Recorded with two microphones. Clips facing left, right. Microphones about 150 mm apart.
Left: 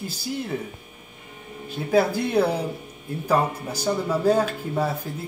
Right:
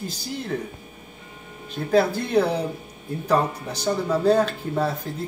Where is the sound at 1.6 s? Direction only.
10° left (ahead or behind).